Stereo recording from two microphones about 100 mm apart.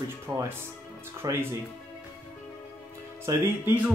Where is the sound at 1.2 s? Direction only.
40° right (ahead or behind).